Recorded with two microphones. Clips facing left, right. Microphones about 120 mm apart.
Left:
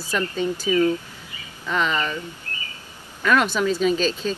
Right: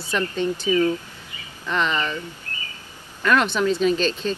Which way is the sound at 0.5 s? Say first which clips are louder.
Even; 25° right (ahead or behind).